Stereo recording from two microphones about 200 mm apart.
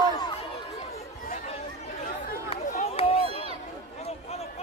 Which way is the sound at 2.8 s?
30° left (ahead or behind).